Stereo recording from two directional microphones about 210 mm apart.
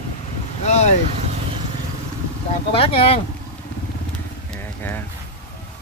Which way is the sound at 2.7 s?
25° left (ahead or behind).